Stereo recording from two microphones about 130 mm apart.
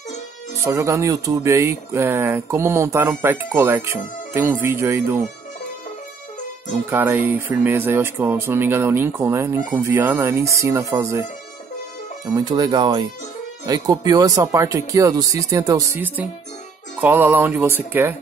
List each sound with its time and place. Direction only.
0.7 s speech: 25° right (ahead or behind)
6.9 s speech: 15° right (ahead or behind)
12.4 s speech: 30° right (ahead or behind)
17.0 s speech: 15° right (ahead or behind)